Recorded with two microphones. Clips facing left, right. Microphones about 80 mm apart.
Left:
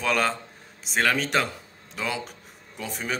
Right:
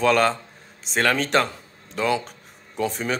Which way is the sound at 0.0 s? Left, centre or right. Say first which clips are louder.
Right 6 dB; centre.